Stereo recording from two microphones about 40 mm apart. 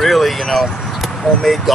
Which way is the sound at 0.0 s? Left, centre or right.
Centre.